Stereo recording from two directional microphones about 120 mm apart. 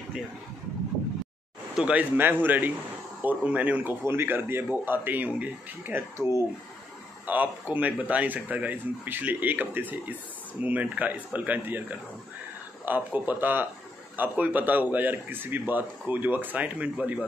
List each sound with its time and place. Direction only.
1.8 s a man's voice: 10° right (ahead or behind)